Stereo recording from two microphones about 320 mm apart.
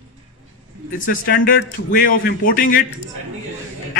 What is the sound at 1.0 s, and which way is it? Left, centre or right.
A man's voice, left.